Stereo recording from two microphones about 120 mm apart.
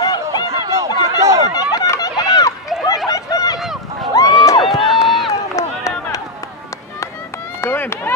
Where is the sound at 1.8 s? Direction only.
30° left (ahead or behind).